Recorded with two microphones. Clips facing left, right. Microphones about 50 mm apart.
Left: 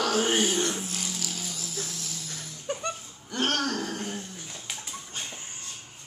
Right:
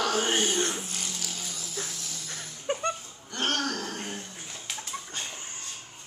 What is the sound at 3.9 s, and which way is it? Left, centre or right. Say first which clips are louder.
Dog: left 2 dB; centre.